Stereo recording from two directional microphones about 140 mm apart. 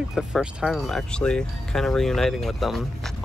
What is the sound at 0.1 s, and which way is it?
Speech, 5° right (ahead or behind).